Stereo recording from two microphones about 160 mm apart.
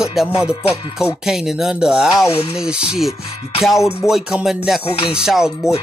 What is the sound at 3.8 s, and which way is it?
Music, 15° left (ahead or behind).